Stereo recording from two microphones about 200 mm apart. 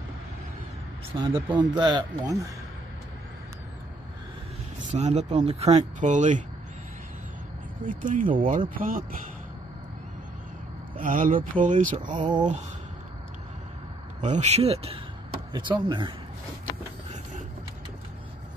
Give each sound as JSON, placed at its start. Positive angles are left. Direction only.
{"t": 1.1, "sound": "speech", "side_deg": -25}
{"t": 4.7, "sound": "speech", "side_deg": -35}
{"t": 7.8, "sound": "speech", "side_deg": -40}
{"t": 11.0, "sound": "speech", "side_deg": -40}
{"t": 12.2, "sound": "speech", "side_deg": -20}
{"t": 14.2, "sound": "speech", "side_deg": -35}